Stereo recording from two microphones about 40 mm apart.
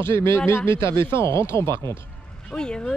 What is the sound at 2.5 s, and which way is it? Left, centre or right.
Speech, left.